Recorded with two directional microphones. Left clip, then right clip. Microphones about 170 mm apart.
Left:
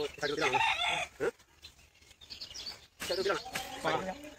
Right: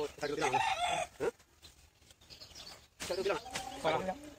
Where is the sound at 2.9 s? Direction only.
55° left (ahead or behind).